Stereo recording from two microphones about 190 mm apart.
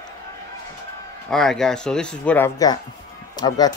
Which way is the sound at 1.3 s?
Centre (ahead or behind).